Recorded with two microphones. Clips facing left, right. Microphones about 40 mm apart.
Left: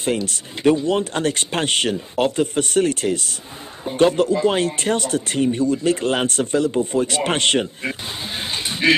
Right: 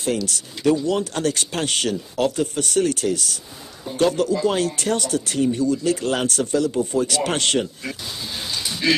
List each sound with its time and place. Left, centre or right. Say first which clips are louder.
0.0 s speech: left 1 dB; left